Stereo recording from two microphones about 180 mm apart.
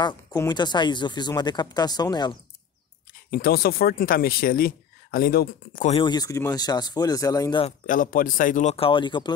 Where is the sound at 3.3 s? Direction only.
55° left (ahead or behind).